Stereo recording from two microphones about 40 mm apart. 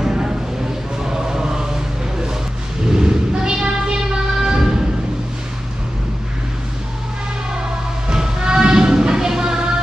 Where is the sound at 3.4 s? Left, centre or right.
Centre.